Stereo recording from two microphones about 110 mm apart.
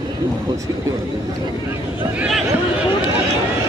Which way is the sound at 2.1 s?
5° right (ahead or behind).